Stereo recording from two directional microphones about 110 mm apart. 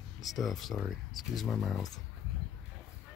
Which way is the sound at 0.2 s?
Centre (ahead or behind).